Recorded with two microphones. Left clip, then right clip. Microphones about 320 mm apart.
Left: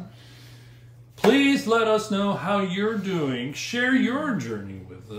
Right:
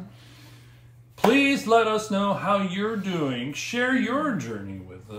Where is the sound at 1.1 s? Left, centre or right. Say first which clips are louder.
Left 1 dB; centre.